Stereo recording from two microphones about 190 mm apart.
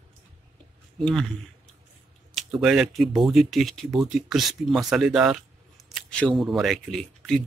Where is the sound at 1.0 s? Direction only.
Centre (ahead or behind).